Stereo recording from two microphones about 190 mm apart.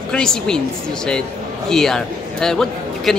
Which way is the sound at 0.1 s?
5° left (ahead or behind).